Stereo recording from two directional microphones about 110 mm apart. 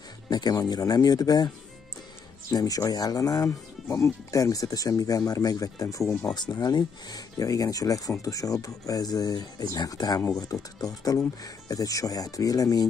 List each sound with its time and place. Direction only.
0.3 s speech: 35° left (ahead or behind)
2.5 s speech: 35° left (ahead or behind)